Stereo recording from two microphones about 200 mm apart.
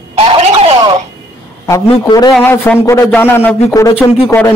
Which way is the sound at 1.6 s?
15° left (ahead or behind).